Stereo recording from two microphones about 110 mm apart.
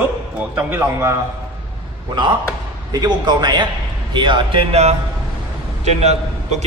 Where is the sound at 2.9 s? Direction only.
35° right (ahead or behind).